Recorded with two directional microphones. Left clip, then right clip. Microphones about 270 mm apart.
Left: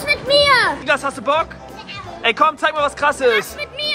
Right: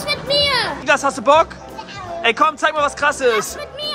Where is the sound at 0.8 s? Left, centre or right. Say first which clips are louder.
Right 3 dB; centre.